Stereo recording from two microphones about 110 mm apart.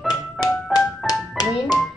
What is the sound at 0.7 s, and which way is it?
Music, 35° left (ahead or behind).